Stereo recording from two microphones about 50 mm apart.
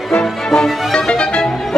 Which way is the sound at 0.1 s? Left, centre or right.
Centre.